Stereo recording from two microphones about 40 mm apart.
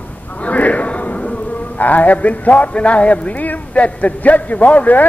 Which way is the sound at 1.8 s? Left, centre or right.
Left.